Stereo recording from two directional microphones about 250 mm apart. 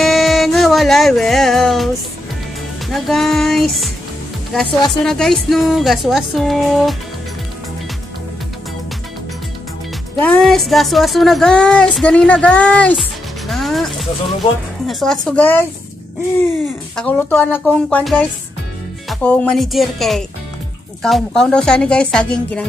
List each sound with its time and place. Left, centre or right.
0.0 s music: centre
2.9 s speech: centre
5.0 s speech: centre
10.1 s speech: centre
13.5 s music: centre
14.9 s speech: centre
16.9 s speech: centre